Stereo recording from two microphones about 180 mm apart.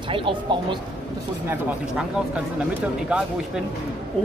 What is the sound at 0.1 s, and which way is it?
Speech, 30° right (ahead or behind).